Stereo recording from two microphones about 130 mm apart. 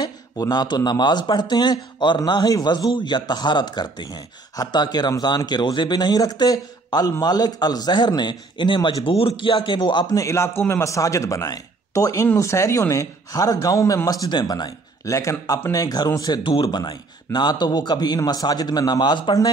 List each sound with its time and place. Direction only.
0.0 s a man's voice: 30° left (ahead or behind)